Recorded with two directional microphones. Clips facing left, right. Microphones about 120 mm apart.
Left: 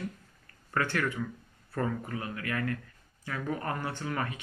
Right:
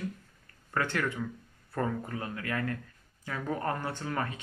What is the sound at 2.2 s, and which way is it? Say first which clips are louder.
Speech: even; 30° right (ahead or behind).